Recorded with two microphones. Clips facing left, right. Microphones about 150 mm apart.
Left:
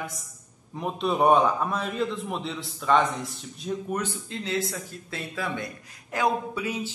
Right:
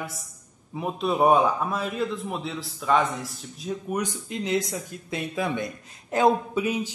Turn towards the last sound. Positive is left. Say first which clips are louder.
# right 4 dB
turn(degrees=-15)  # may be behind; listen again after turning